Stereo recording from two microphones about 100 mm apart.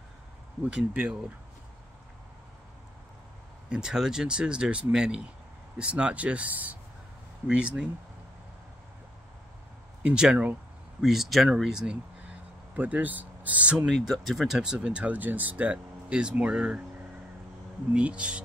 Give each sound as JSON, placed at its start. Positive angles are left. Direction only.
{"t": 0.6, "sound": "speech", "side_deg": -10}
{"t": 3.6, "sound": "speech", "side_deg": -10}
{"t": 10.0, "sound": "speech", "side_deg": -10}
{"t": 13.8, "sound": "speech", "side_deg": 0}
{"t": 17.9, "sound": "speech", "side_deg": -10}